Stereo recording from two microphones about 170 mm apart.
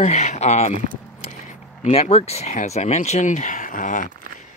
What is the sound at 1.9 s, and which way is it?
Speech, 35° left (ahead or behind).